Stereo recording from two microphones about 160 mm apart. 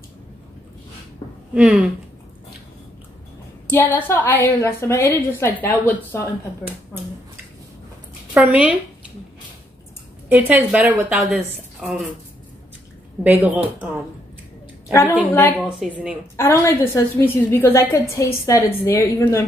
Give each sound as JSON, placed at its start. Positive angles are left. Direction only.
{"t": 1.5, "sound": "speech", "side_deg": -5}
{"t": 3.7, "sound": "a woman's voice", "side_deg": 10}
{"t": 8.4, "sound": "a woman's voice", "side_deg": -10}
{"t": 10.3, "sound": "a woman's voice", "side_deg": -10}
{"t": 13.2, "sound": "a woman's voice", "side_deg": -10}
{"t": 14.9, "sound": "a woman's voice", "side_deg": 15}
{"t": 15.8, "sound": "a woman's voice", "side_deg": -5}
{"t": 16.3, "sound": "a woman's voice", "side_deg": 15}